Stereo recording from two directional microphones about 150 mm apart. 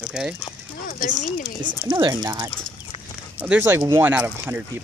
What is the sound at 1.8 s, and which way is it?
Speech, 30° right (ahead or behind).